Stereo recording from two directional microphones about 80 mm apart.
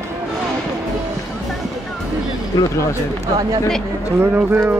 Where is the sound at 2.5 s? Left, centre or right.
Left.